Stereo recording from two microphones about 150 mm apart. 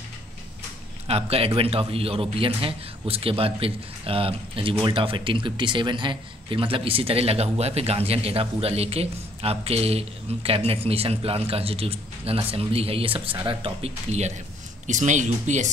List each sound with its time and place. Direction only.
1.0 s speech: 40° right (ahead or behind)